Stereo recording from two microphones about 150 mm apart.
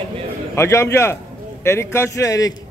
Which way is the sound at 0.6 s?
20° left (ahead or behind).